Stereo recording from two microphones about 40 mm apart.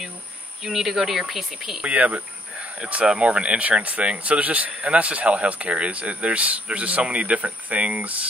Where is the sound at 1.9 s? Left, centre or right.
Right.